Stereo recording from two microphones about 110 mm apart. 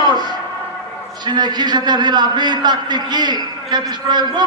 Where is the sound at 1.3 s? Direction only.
40° right (ahead or behind).